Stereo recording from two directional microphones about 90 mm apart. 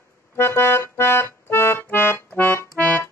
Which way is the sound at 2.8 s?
20° left (ahead or behind).